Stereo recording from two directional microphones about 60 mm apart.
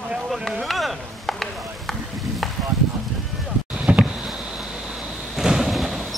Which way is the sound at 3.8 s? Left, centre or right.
Centre.